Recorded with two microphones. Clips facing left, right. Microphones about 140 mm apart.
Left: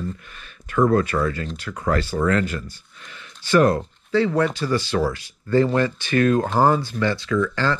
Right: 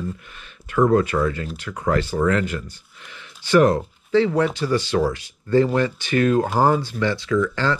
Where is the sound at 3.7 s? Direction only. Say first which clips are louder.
Right 2 dB; 15° right (ahead or behind).